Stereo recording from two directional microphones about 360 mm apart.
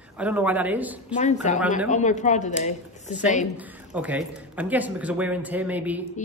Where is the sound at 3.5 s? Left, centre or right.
Centre.